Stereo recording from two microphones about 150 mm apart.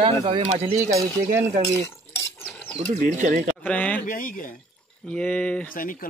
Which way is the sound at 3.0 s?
60° right (ahead or behind).